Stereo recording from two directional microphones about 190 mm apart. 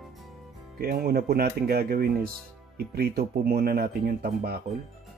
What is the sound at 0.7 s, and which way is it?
Speech, 55° right (ahead or behind).